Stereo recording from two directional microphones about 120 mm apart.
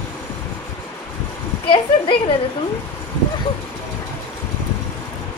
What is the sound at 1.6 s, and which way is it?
Speech, 45° left (ahead or behind).